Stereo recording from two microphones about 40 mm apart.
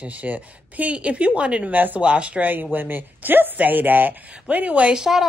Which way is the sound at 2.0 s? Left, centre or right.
Right.